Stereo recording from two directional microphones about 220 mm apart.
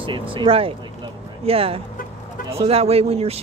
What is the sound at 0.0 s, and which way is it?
Speech, 20° right (ahead or behind).